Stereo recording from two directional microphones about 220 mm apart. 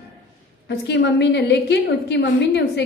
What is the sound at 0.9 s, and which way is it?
A woman's voice, 50° left (ahead or behind).